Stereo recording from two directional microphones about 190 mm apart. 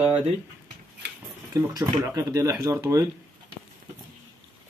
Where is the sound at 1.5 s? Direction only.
15° right (ahead or behind).